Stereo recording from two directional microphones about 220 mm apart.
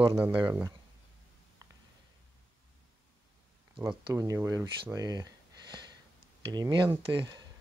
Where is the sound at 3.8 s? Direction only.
15° right (ahead or behind).